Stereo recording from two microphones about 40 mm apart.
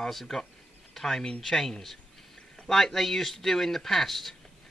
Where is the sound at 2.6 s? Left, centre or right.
Centre.